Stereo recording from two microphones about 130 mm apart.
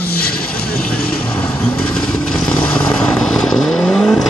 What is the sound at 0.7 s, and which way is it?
Vehicle, 10° left (ahead or behind).